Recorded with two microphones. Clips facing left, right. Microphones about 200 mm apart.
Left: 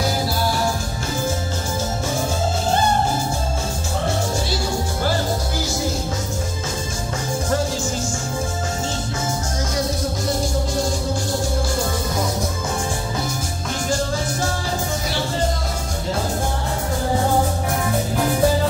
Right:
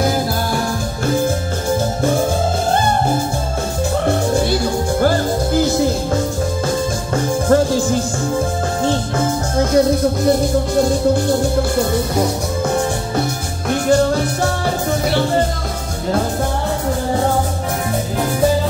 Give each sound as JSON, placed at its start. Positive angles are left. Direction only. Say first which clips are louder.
{"t": 4.1, "sound": "music", "louder": "right 7 dB", "side_deg": -60}
{"t": 7.4, "sound": "music", "louder": "right 10 dB", "side_deg": -55}
{"t": 8.8, "sound": "music", "louder": "right 8 dB", "side_deg": -60}
{"t": 12.2, "sound": "music", "louder": "right 6 dB", "side_deg": -65}